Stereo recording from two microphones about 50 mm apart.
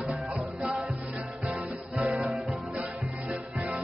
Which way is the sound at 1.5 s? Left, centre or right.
Right.